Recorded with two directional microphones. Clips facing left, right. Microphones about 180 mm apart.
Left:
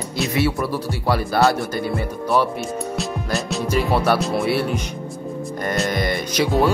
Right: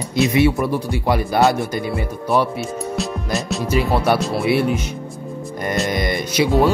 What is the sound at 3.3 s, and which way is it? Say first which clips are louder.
Speech: right 2 dB; centre (ahead or behind).